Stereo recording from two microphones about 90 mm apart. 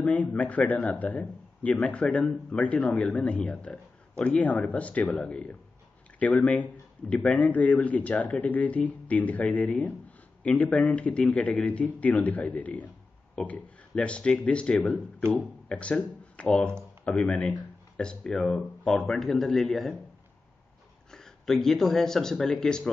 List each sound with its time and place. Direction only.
0.0 s a man's voice: 15° left (ahead or behind); by 19.9 s centre (ahead or behind)
21.1 s speech: 5° left (ahead or behind)